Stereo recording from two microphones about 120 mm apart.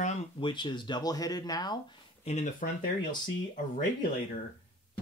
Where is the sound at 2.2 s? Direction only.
80° left.